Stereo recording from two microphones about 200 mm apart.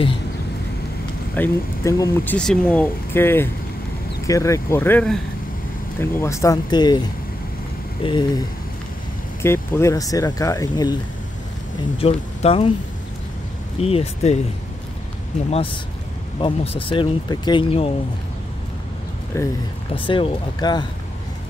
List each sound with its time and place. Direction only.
1.3 s speech: 10° left (ahead or behind)
8.0 s speech: 25° left (ahead or behind)
9.4 s speech: 15° left (ahead or behind)
12.0 s speech: 30° left (ahead or behind)
13.7 s speech: 30° left (ahead or behind)
15.5 s speech: 25° left (ahead or behind)
19.3 s speech: 15° left (ahead or behind)
19.9 s speech: 25° left (ahead or behind)